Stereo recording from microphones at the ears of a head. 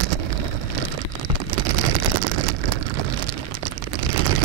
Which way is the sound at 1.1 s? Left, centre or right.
Right.